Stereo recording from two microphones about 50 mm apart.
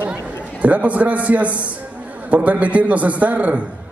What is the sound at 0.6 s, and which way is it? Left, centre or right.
A man's voice, right.